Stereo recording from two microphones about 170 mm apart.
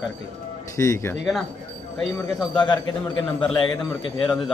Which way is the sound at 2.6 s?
30° left (ahead or behind).